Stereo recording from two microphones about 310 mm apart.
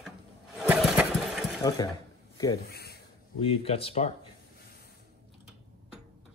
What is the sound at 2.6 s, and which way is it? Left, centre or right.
Speech, left.